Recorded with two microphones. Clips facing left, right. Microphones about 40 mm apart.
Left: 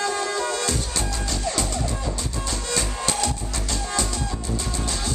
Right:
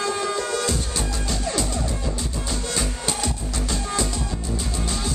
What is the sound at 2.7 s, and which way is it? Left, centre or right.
Music, centre.